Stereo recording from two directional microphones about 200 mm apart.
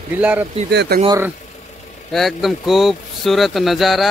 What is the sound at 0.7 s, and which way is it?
Speech, 55° right (ahead or behind).